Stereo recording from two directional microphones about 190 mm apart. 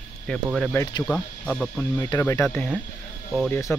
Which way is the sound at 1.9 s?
15° left (ahead or behind).